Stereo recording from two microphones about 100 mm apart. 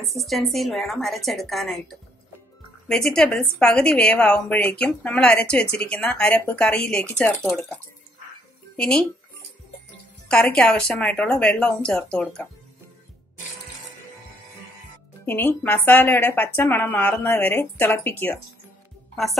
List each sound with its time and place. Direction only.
0.1 s a woman's voice: centre (ahead or behind)
10.2 s a woman's voice: 5° left (ahead or behind)
15.2 s speech: 20° left (ahead or behind)